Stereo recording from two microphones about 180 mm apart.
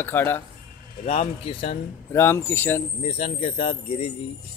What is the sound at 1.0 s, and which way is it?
Speech, 35° left (ahead or behind).